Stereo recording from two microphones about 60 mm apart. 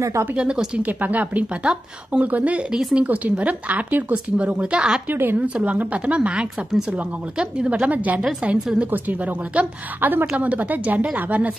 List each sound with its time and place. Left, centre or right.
0.4 s speech: centre
2.7 s speech: centre
5.1 s a woman's voice: right
5.7 s speech: right
7.8 s speech: right